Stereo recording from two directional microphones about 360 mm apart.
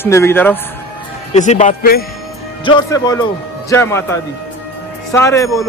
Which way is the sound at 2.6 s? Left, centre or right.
Centre.